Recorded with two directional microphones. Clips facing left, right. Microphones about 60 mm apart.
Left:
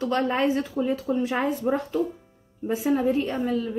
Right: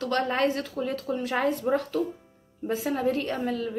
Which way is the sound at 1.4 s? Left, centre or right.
Centre.